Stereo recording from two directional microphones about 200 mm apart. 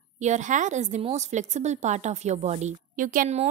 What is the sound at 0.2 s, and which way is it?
A woman's voice, 35° right (ahead or behind).